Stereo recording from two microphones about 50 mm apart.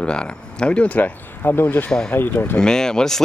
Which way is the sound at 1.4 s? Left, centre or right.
Left.